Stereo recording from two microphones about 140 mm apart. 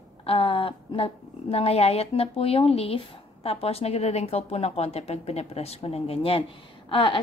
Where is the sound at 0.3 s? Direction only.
40° left (ahead or behind).